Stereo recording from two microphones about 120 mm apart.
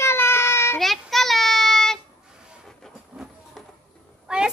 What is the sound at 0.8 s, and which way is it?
Child singing, centre (ahead or behind).